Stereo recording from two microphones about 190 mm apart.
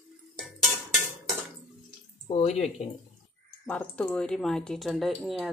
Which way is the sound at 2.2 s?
35° left (ahead or behind).